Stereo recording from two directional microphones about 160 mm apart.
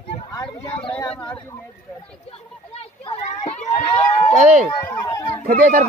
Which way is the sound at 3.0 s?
40° left (ahead or behind).